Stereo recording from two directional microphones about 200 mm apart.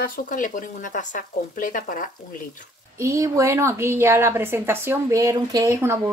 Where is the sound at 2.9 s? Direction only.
15° right (ahead or behind).